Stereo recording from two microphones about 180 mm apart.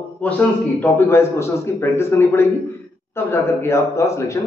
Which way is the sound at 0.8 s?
15° left (ahead or behind).